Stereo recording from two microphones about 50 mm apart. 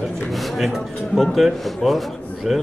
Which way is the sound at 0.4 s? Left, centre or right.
Centre.